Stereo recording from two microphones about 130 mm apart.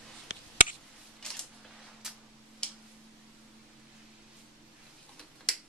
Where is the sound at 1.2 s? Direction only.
5° left (ahead or behind).